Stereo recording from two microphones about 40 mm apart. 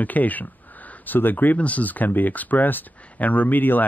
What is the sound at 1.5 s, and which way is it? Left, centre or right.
Speech, left.